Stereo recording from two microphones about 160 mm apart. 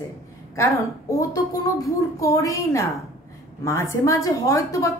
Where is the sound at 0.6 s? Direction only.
20° left (ahead or behind).